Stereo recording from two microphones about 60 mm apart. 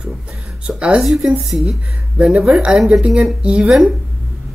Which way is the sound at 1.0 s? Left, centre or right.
Centre.